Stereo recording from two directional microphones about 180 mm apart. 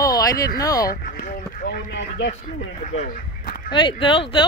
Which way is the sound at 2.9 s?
50° left (ahead or behind).